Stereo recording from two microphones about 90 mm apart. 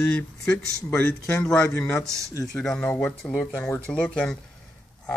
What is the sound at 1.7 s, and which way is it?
Speech, 30° left (ahead or behind).